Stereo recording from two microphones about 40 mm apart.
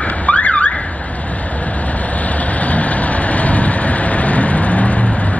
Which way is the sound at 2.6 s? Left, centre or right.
Left.